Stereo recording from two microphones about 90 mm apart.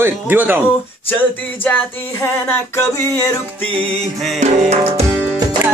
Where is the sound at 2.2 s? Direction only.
30° left (ahead or behind).